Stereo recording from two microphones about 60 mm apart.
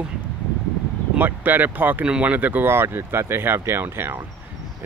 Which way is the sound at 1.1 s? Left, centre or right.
Right.